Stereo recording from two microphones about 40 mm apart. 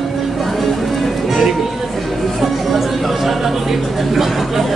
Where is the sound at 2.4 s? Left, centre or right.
Centre.